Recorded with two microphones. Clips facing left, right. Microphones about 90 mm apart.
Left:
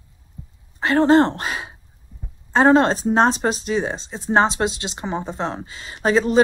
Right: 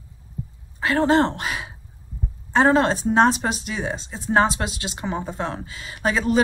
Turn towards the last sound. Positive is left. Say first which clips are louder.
# left 4 dB
turn(degrees=30)  # may be behind; listen again after turning